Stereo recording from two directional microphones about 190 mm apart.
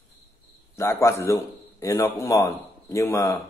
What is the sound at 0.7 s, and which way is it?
A man's voice, 15° left (ahead or behind).